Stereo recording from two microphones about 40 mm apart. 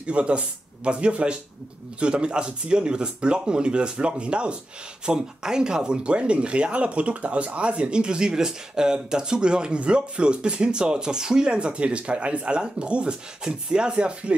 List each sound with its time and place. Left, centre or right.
0.0 s speech: right